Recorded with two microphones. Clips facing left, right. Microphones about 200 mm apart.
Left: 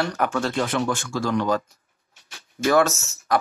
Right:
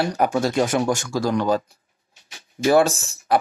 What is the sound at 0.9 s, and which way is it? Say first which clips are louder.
Speech: right 3 dB; 40° right (ahead or behind).